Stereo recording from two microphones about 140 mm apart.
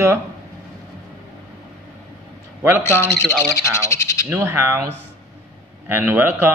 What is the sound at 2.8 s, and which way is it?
Owl, 15° left (ahead or behind).